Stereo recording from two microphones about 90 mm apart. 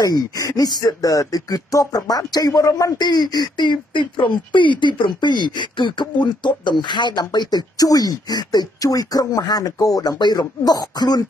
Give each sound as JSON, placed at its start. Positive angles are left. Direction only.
{"t": 0.0, "sound": "speech", "side_deg": 45}
{"t": 3.0, "sound": "speech", "side_deg": 50}